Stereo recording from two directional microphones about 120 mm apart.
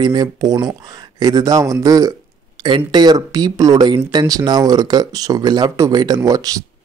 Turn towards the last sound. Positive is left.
turn(degrees=-30)  # may be behind; listen again after turning